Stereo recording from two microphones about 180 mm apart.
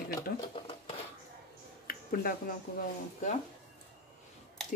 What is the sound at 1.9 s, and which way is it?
Speech, 55° left (ahead or behind).